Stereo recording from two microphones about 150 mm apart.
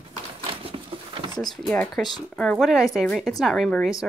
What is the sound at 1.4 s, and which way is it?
Speech, centre (ahead or behind).